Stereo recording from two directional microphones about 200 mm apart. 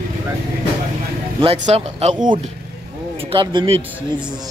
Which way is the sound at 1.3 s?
30° right (ahead or behind).